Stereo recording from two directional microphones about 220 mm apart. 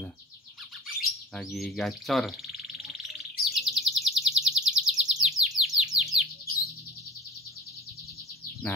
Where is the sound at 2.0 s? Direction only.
Centre (ahead or behind).